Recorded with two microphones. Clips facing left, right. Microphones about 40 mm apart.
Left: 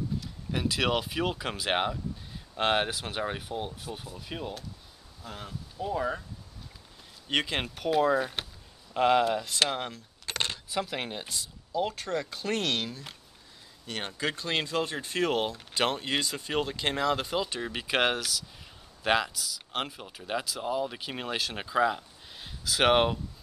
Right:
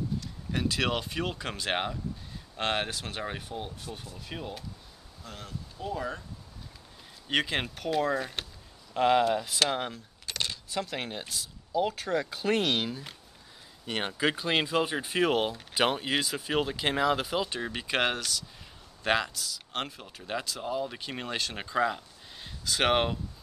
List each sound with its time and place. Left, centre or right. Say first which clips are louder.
0.2 s speech: even; centre
7.2 s speech: right 1 dB; centre
10.2 s coin: left 2 dB; left
10.7 s speech: left 1 dB; centre